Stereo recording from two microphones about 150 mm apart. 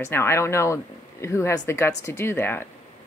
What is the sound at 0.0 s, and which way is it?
A woman's voice, 15° left (ahead or behind).